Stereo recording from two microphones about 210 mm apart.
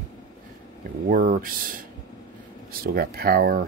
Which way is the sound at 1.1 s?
45° right (ahead or behind).